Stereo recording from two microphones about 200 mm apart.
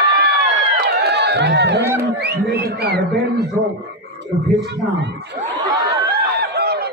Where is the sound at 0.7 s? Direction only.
55° right (ahead or behind).